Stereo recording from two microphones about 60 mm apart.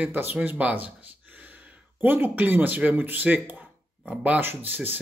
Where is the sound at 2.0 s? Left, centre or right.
Right.